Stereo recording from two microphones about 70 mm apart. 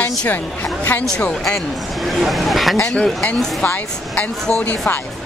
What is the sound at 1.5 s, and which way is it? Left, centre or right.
Speech, centre.